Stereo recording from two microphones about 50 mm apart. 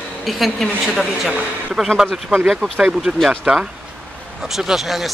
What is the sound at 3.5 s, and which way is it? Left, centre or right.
Speech, right.